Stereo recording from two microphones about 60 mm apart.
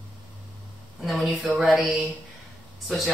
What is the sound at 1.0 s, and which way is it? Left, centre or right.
Speech, centre.